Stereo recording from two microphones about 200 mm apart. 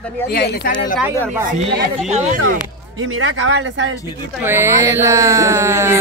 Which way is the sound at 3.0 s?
90° right.